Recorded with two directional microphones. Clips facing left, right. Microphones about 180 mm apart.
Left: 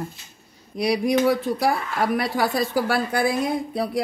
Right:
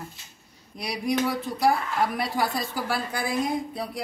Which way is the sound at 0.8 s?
75° left (ahead or behind).